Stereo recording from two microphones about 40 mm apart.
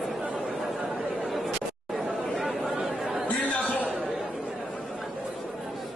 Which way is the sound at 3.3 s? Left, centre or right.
Left.